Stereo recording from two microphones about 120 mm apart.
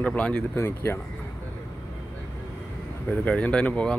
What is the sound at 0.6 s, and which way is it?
Speech, 20° left (ahead or behind).